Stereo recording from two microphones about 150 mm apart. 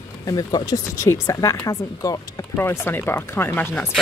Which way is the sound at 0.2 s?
25° left (ahead or behind).